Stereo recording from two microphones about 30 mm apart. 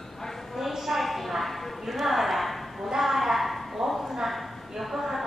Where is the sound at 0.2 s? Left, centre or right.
Centre.